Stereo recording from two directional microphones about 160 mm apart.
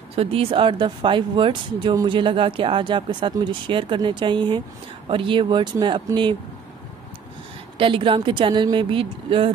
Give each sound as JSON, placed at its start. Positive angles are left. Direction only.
{"t": 0.1, "sound": "speech", "side_deg": -35}
{"t": 7.8, "sound": "speech", "side_deg": -35}